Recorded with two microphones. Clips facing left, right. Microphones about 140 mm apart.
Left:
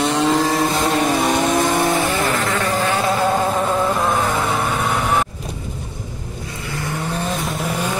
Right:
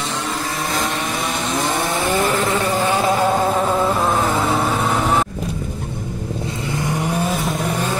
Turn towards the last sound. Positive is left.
turn(degrees=-10)  # may be behind; listen again after turning